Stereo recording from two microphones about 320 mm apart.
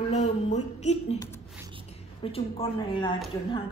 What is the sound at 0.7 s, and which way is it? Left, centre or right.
Speech, left.